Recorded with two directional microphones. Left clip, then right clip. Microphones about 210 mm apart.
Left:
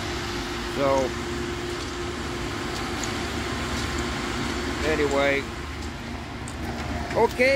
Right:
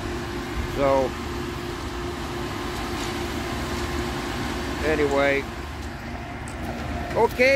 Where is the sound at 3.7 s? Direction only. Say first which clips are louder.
Even; 45° right (ahead or behind).